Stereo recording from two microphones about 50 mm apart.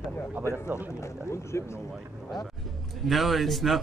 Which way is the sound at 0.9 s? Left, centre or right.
Left.